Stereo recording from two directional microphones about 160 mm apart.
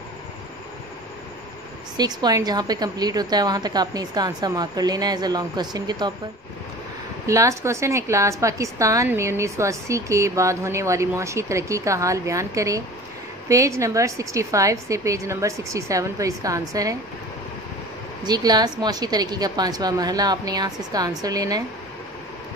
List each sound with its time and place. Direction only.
2.0 s a woman's voice: 25° right (ahead or behind)
7.2 s a woman's voice: 20° right (ahead or behind)
18.2 s a woman's voice: 25° right (ahead or behind)